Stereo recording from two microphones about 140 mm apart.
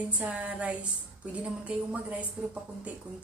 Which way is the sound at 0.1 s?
10° right (ahead or behind).